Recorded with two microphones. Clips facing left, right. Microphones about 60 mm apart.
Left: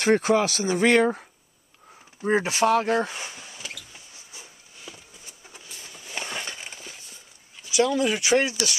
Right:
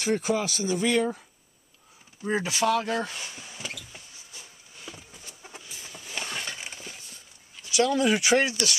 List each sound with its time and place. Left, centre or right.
0.0 s speech: left
2.2 s speech: left
3.1 s a sound: centre
4.3 s wood: centre
5.4 s a sound: centre
7.6 s speech: centre